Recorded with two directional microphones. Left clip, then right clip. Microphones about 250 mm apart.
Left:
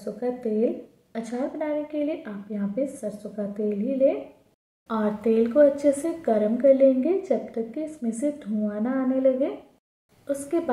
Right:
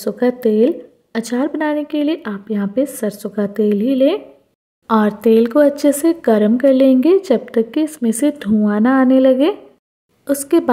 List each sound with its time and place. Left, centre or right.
0.0 s a woman's voice: right